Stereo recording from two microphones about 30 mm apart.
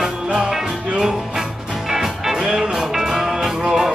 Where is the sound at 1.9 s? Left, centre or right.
Centre.